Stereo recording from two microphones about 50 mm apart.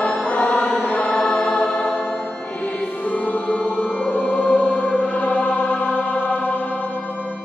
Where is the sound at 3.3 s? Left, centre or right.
Left.